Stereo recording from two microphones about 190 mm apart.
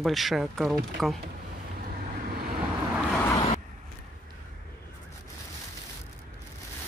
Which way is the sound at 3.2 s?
25° left (ahead or behind).